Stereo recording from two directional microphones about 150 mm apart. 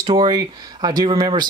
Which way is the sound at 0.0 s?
30° right (ahead or behind).